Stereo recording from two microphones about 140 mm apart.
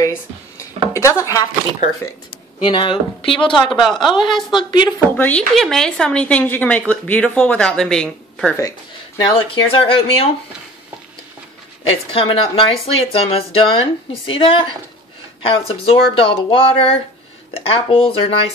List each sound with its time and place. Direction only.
0.0 s a sound: 20° left (ahead or behind)
0.9 s speech: 20° left (ahead or behind)
2.6 s speech: 40° left (ahead or behind)
3.6 s speech: centre (ahead or behind)
4.2 s speech: 35° left (ahead or behind)
5.1 s a woman's voice: 10° left (ahead or behind)
9.2 s speech: 40° left (ahead or behind)
12.1 s speech: 40° left (ahead or behind)